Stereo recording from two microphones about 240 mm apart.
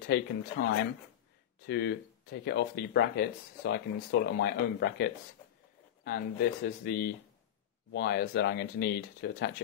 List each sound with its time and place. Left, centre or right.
0.0 s speech: left